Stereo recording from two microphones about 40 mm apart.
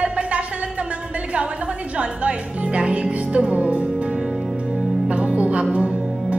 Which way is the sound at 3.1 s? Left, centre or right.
Right.